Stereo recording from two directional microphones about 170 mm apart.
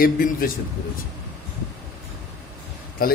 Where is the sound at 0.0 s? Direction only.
55° left (ahead or behind).